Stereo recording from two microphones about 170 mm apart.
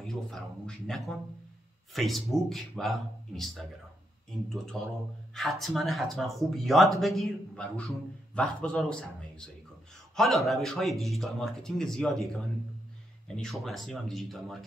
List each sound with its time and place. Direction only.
0.0 s speech: 5° left (ahead or behind)
4.7 s speech: 5° left (ahead or behind)
13.4 s speech: centre (ahead or behind)